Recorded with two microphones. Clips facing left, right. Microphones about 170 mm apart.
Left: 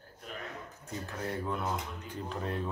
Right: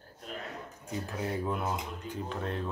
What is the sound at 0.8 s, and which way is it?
Speech, 5° right (ahead or behind).